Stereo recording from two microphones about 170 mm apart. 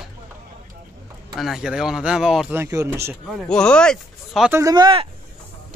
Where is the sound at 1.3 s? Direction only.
Centre (ahead or behind).